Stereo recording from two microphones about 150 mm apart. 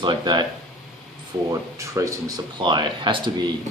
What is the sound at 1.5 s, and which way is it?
Speech, 20° right (ahead or behind).